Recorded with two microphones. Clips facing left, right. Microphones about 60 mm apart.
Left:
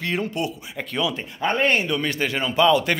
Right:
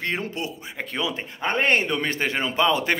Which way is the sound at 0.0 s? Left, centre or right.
Right.